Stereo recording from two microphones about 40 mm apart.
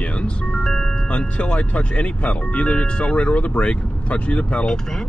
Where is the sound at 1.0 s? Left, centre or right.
Left.